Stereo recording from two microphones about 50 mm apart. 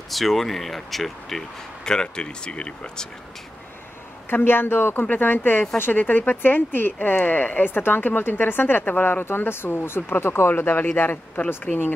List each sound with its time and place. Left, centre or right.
0.1 s speech: centre
1.9 s speech: centre
4.3 s speech: left